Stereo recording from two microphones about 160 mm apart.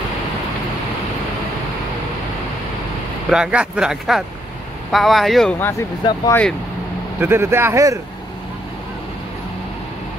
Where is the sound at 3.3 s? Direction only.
5° right (ahead or behind).